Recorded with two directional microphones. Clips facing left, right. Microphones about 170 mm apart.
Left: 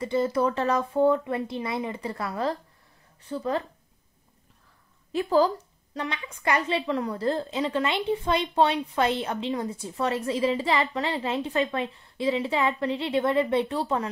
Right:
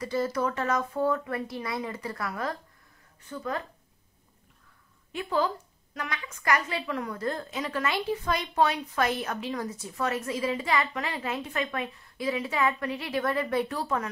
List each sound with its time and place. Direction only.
0.0 s a woman's voice: 25° left (ahead or behind)
5.1 s a woman's voice: 35° left (ahead or behind)